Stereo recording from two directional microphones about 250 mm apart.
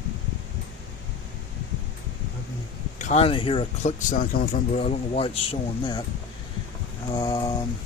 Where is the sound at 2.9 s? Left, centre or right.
Left.